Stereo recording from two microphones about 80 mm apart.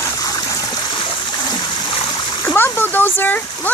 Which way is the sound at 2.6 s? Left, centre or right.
Left.